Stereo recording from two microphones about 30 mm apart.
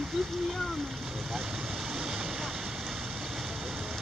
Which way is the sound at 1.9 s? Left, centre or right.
Centre.